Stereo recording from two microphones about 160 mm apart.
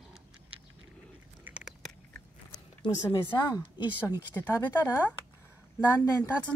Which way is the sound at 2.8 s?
25° left (ahead or behind).